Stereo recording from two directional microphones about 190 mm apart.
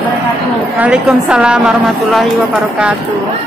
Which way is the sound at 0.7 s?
5° right (ahead or behind).